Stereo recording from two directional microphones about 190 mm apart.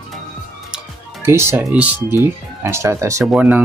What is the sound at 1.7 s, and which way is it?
Speech, 10° right (ahead or behind).